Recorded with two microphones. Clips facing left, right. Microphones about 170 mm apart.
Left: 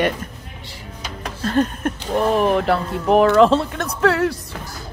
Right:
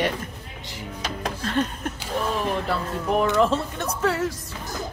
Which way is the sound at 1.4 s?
40° left (ahead or behind).